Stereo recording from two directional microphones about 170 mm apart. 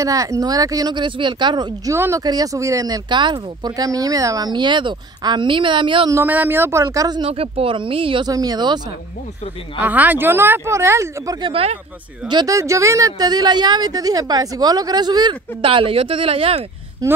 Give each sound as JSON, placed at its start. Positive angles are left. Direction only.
{"t": 0.0, "sound": "speech", "side_deg": -20}
{"t": 6.1, "sound": "speech", "side_deg": -10}
{"t": 7.2, "sound": "speech", "side_deg": -35}
{"t": 9.8, "sound": "speech", "side_deg": -10}
{"t": 11.4, "sound": "speech", "side_deg": -35}
{"t": 12.3, "sound": "speech", "side_deg": -20}
{"t": 17.0, "sound": "speech", "side_deg": -20}